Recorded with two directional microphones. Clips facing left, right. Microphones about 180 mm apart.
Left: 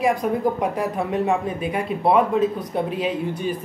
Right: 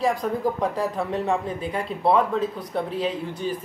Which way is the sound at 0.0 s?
15° left (ahead or behind).